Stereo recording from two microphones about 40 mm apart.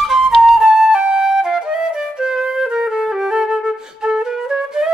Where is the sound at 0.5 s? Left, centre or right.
Centre.